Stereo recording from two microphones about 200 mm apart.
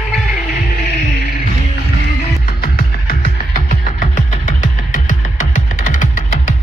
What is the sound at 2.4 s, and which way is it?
Music, 45° left (ahead or behind).